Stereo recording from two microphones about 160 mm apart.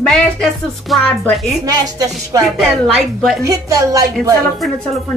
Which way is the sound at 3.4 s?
20° right (ahead or behind).